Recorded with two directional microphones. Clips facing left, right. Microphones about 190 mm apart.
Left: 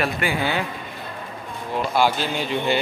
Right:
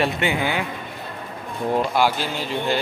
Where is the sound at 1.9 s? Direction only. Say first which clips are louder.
Even; 10° right (ahead or behind).